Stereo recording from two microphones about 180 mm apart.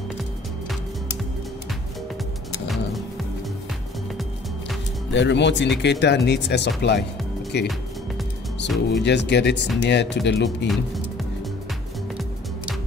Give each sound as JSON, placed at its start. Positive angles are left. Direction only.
{"t": 5.1, "sound": "speech", "side_deg": 85}
{"t": 8.6, "sound": "speech", "side_deg": 0}
{"t": 9.0, "sound": "speech", "side_deg": 70}